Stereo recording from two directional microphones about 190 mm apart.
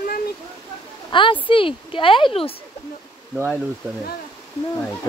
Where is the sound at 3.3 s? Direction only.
5° right (ahead or behind).